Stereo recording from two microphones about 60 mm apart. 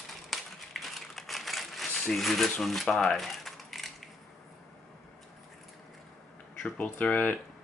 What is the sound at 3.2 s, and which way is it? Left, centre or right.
Crumpling, centre.